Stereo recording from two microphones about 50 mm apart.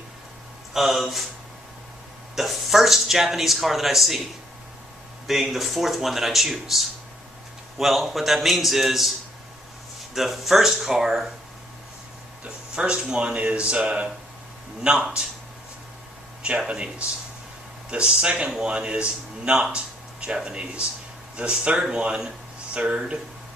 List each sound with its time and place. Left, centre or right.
0.7 s speech: centre
2.3 s speech: centre
5.2 s speech: centre
10.1 s speech: centre
12.7 s speech: centre
16.4 s speech: right
19.7 s a sound: right
20.4 s speech: centre